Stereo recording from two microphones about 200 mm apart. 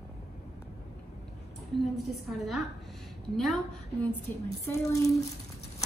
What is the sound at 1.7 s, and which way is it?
A woman's voice, centre (ahead or behind).